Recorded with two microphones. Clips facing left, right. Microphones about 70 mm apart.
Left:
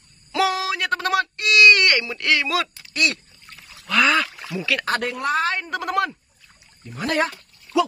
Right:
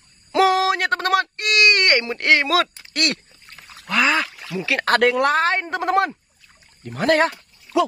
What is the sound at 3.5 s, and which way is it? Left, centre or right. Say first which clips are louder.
Pour: right 3 dB; right.